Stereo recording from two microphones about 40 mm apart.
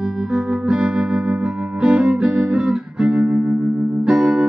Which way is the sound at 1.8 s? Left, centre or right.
Right.